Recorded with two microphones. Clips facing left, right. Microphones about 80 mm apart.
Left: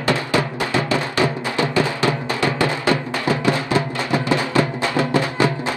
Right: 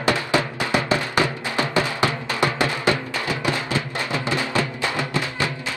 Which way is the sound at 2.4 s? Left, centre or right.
Right.